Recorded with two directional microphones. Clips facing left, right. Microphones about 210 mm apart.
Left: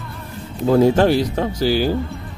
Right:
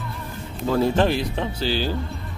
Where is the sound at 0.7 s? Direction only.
10° left (ahead or behind).